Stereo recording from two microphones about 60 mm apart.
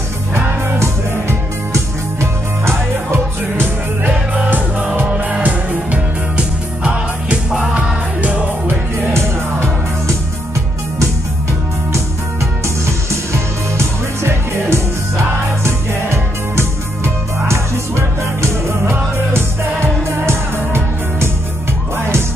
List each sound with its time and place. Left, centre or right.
0.3 s music: right
4.1 s music: centre
4.5 s music: right
7.5 s music: centre
8.2 s music: centre
8.6 s music: right
12.6 s music: right